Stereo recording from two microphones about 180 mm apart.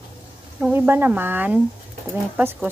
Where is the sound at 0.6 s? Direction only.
10° right (ahead or behind).